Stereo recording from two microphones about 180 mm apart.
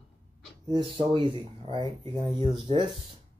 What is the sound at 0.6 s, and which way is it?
Speech, 25° right (ahead or behind).